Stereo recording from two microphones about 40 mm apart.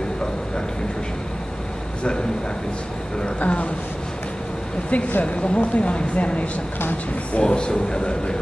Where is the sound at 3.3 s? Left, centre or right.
Left.